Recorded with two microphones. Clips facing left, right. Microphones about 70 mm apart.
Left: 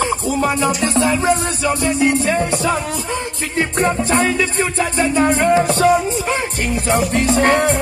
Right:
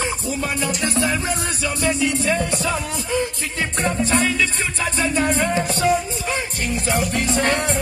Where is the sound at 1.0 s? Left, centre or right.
Left.